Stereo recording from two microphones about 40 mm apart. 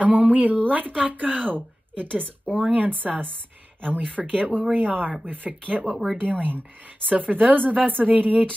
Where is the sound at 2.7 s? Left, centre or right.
Right.